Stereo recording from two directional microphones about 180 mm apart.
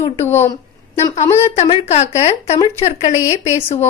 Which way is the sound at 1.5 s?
35° left (ahead or behind).